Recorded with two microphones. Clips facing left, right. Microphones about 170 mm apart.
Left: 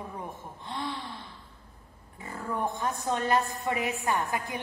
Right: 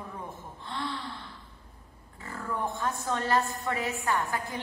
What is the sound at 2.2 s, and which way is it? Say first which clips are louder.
A woman's voice: left 1 dB; 20° left (ahead or behind).